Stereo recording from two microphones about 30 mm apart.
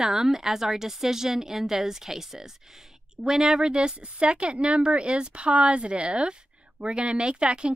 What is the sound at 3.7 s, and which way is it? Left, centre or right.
Speech, right.